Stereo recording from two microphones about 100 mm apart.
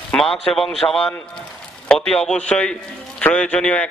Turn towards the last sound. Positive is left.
turn(degrees=10)  # may be behind; listen again after turning